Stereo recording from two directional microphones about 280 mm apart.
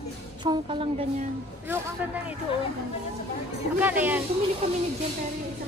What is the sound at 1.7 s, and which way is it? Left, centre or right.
Speech, centre.